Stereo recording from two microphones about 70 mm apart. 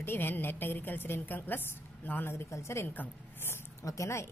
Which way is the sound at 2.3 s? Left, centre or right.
Left.